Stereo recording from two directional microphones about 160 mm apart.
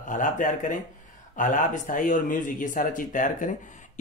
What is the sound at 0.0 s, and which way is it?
Speech, 55° left (ahead or behind).